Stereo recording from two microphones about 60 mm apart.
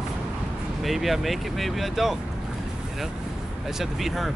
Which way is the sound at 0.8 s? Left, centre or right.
Centre.